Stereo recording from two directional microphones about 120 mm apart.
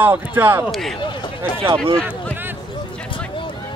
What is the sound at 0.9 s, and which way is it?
Speech, 40° left (ahead or behind).